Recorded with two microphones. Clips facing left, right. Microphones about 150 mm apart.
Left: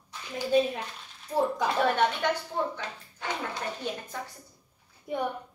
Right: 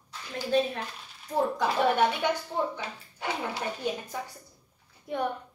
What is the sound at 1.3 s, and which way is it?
Speech, centre (ahead or behind).